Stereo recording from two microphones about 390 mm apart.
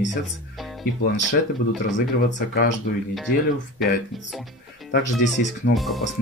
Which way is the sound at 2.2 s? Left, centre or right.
Left.